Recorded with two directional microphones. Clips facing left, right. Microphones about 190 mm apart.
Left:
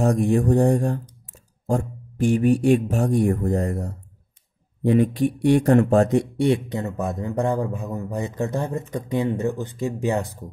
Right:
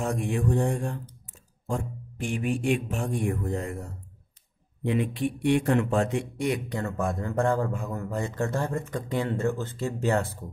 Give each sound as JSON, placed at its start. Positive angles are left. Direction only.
{"t": 0.0, "sound": "speech", "side_deg": 40}